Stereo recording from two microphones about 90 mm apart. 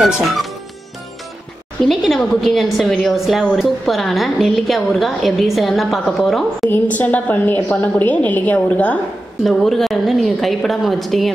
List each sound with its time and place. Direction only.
0.0 s a woman's voice: centre (ahead or behind)
1.9 s a woman's voice: centre (ahead or behind)
6.7 s a woman's voice: 20° left (ahead or behind)
9.4 s a woman's voice: 5° left (ahead or behind)